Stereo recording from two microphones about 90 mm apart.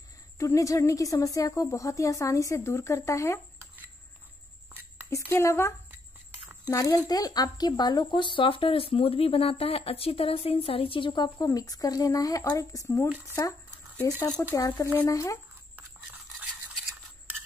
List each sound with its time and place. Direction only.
0.4 s a woman's voice: 40° left (ahead or behind)
5.1 s speech: 35° left (ahead or behind)
6.4 s a sound: 20° right (ahead or behind)
6.7 s a woman's voice: 40° left (ahead or behind)
15.7 s toothbrush: 15° right (ahead or behind)